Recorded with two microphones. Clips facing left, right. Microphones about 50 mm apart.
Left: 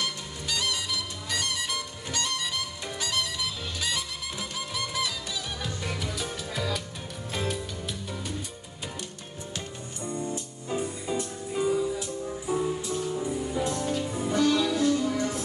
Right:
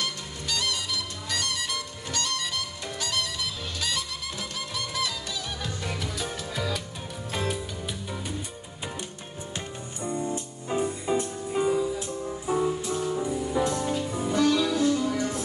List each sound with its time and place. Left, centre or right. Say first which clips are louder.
0.0 s music: even; centre
10.0 s music: right 3 dB; right
13.2 s music: right 3 dB; right
13.9 s music: right 1 dB; centre